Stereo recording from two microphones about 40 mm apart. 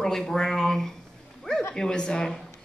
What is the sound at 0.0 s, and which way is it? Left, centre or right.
Speech, centre.